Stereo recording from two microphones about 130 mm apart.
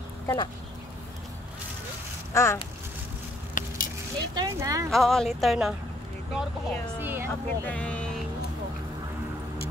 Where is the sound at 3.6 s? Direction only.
90° left.